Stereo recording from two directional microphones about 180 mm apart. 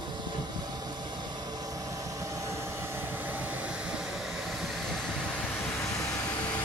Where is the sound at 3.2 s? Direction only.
10° right (ahead or behind).